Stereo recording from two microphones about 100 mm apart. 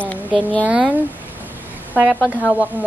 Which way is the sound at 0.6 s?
10° right (ahead or behind).